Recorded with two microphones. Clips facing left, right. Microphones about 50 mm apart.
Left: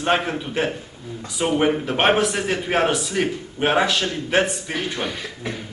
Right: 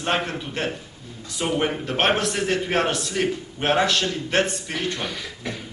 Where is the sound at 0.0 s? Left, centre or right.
Centre.